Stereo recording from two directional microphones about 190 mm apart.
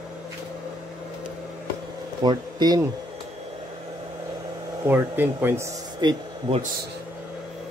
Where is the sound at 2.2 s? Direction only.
20° right (ahead or behind).